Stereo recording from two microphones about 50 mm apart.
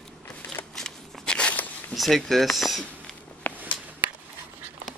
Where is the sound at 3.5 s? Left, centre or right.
Left.